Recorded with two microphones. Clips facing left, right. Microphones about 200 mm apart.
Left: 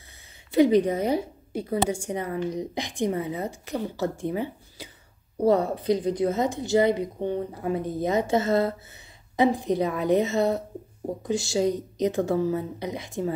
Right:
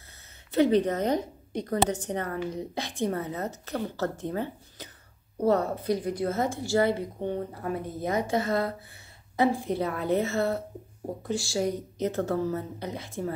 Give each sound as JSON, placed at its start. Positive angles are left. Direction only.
{"t": 0.5, "sound": "a woman's voice", "side_deg": 10}